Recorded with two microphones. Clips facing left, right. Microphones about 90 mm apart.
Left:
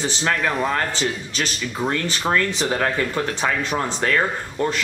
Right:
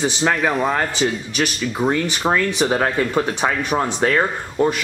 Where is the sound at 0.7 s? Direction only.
15° right (ahead or behind).